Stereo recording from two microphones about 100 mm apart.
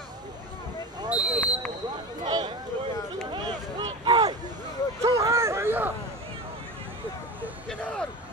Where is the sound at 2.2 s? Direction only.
50° right (ahead or behind).